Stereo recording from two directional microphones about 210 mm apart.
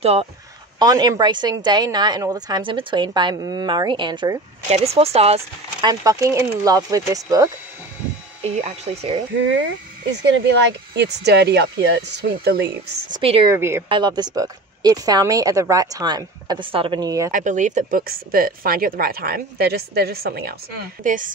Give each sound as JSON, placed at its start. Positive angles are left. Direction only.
{"t": 0.0, "sound": "a woman's voice", "side_deg": -30}
{"t": 8.5, "sound": "speech", "side_deg": -30}
{"t": 11.0, "sound": "speech", "side_deg": -55}
{"t": 13.1, "sound": "a woman's voice", "side_deg": -25}
{"t": 13.5, "sound": "a woman's voice", "side_deg": -10}
{"t": 17.3, "sound": "speech", "side_deg": -40}
{"t": 21.0, "sound": "speech", "side_deg": -40}